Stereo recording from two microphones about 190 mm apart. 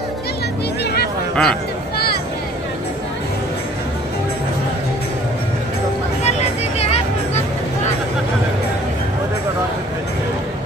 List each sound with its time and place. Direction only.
1.3 s speech: 5° left (ahead or behind)
6.8 s music: 35° left (ahead or behind)